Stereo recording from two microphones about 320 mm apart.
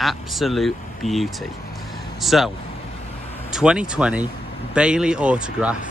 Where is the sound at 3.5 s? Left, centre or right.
Centre.